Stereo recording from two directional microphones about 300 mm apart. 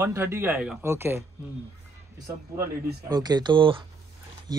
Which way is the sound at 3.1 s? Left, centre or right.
Centre.